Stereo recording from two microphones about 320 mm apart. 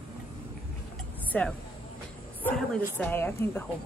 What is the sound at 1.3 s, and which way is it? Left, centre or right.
A woman's voice, centre.